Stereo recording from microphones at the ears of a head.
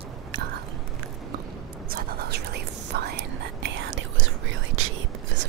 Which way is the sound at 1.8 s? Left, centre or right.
Right.